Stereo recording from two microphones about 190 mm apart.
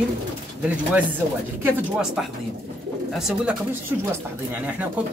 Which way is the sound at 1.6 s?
5° right (ahead or behind).